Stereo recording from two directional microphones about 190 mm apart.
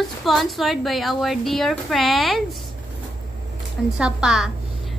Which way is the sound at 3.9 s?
5° right (ahead or behind).